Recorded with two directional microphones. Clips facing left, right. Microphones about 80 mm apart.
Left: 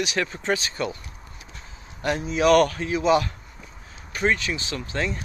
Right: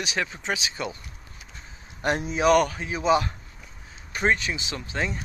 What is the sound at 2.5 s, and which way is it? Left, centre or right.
Speech, centre.